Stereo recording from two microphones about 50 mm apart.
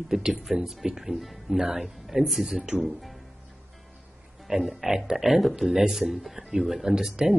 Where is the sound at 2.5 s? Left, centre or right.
Centre.